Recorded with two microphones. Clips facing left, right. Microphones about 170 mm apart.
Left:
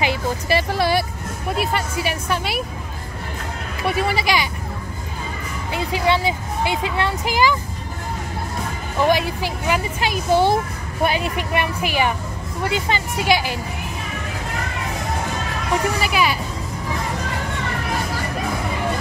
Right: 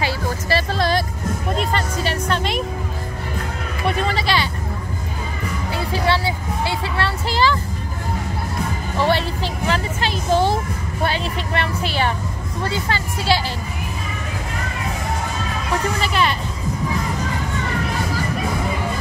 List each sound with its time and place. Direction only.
0.0 s vehicle: 15° left (ahead or behind)
1.5 s music: 5° left (ahead or behind)
3.8 s speech: 10° left (ahead or behind)
5.7 s speech: 20° left (ahead or behind)
9.0 s speech: 10° left (ahead or behind)
16.0 s speech: 10° left (ahead or behind)